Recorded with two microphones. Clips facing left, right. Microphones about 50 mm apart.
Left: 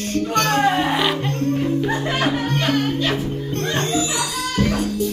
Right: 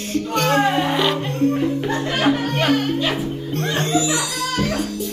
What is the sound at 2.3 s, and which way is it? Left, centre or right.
Music, centre.